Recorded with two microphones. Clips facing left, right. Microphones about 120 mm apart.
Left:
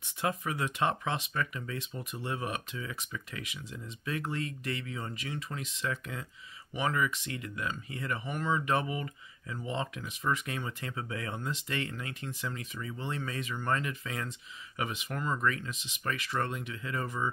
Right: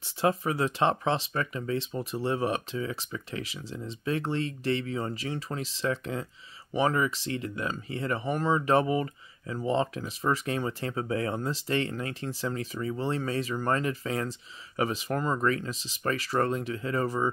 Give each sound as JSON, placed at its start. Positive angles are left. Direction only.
{"t": 0.0, "sound": "speech", "side_deg": -30}